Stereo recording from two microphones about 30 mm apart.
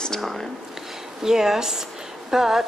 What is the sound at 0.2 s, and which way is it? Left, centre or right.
Speech, centre.